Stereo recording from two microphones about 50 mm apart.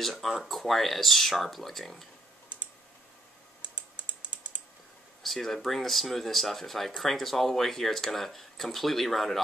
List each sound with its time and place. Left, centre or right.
0.0 s speech: centre
3.9 s typing: right
5.2 s speech: centre